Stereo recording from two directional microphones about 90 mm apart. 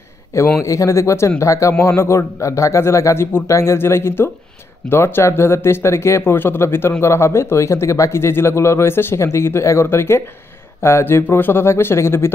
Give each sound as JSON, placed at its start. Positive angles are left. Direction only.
{"t": 0.6, "sound": "speech", "side_deg": 35}